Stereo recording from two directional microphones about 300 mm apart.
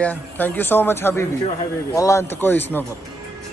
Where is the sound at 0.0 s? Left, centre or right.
Centre.